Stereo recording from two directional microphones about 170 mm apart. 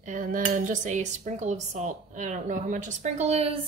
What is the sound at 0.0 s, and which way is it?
Speech, 50° right (ahead or behind).